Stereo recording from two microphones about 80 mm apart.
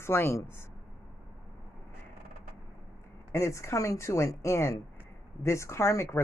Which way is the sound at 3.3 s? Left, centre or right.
Left.